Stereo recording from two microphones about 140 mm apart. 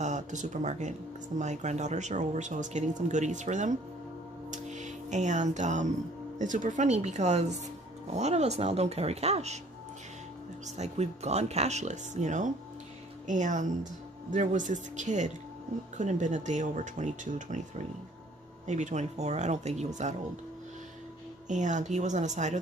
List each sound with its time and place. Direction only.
0.0 s speech: 60° right (ahead or behind)
4.5 s music: 60° right (ahead or behind)
6.3 s speech: 65° right (ahead or behind)
10.8 s speech: 50° right (ahead or behind)
21.5 s speech: 60° right (ahead or behind)